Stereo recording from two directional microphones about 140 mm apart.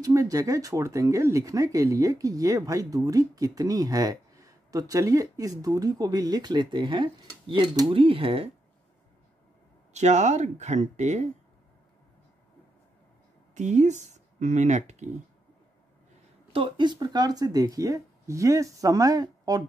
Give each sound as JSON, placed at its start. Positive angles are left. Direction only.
{"t": 0.0, "sound": "speech", "side_deg": -25}
{"t": 9.9, "sound": "speech", "side_deg": -55}
{"t": 13.6, "sound": "speech", "side_deg": -55}
{"t": 16.5, "sound": "speech", "side_deg": -35}